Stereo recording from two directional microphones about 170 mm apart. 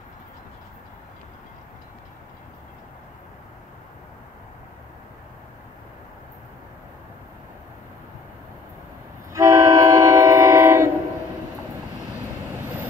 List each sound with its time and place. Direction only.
9.3 s train: 20° right (ahead or behind)